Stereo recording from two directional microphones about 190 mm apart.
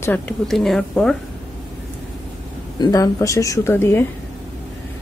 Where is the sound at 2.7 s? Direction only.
20° left (ahead or behind).